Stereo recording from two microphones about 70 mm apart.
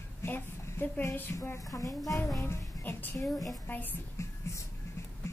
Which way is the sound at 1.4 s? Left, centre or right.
Left.